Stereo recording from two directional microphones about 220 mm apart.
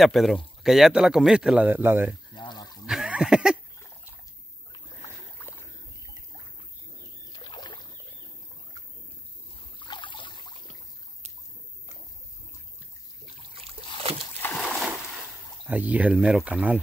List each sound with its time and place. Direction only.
0.0 s speech: centre (ahead or behind)
2.3 s a sound: 20° left (ahead or behind)
2.9 s a sound: 5° right (ahead or behind)
4.7 s boat: 10° left (ahead or behind)
7.3 s rowboat: 20° left (ahead or behind)
9.8 s trickle: 20° left (ahead or behind)
14.4 s splash: 5° left (ahead or behind)
15.6 s speech: 5° right (ahead or behind)